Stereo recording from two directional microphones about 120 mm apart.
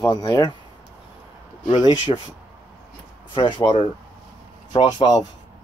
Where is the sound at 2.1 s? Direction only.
45° left (ahead or behind).